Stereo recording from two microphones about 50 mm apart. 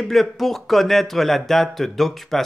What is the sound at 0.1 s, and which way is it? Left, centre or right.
Speech, centre.